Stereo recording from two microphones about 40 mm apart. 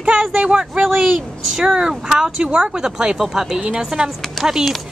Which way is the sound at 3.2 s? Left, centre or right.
Centre.